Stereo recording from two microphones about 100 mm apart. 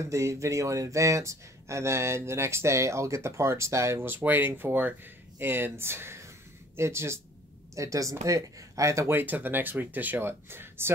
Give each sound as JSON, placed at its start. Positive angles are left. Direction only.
{"t": 0.0, "sound": "speech", "side_deg": -30}